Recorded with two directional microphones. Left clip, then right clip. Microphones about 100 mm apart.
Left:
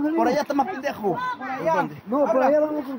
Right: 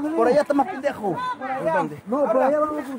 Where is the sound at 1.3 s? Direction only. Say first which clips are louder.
Right 2 dB; 5° right (ahead or behind).